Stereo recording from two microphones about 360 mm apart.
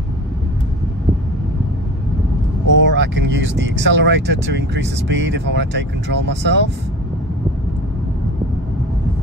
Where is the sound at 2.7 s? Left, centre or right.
Right.